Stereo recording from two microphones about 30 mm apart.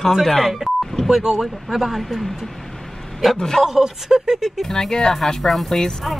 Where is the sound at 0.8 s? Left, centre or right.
Centre.